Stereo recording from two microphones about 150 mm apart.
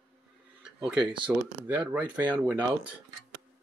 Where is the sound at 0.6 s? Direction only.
5° right (ahead or behind).